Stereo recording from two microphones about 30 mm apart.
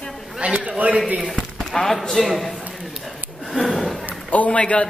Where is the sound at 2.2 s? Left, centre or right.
Centre.